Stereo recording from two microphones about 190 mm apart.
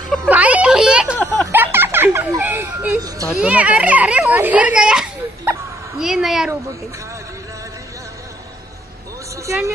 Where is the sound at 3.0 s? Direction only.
20° right (ahead or behind).